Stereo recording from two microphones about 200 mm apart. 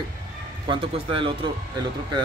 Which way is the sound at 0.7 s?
25° right (ahead or behind).